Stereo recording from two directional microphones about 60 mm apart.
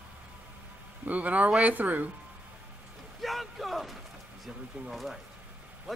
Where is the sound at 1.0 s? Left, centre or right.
Right.